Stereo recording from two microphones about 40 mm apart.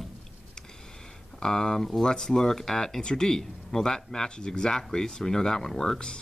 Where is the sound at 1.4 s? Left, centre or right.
Centre.